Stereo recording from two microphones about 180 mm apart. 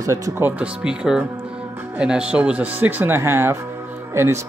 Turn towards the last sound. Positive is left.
turn(degrees=-15)  # may be behind; listen again after turning